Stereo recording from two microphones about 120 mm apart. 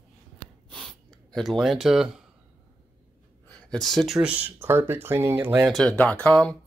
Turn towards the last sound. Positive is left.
turn(degrees=10)  # may be behind; listen again after turning